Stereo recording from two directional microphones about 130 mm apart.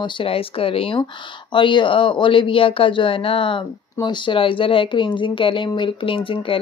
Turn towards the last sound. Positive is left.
turn(degrees=45)  # may be behind; listen again after turning